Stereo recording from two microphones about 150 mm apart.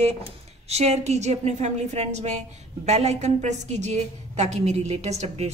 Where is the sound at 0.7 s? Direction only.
45° right (ahead or behind).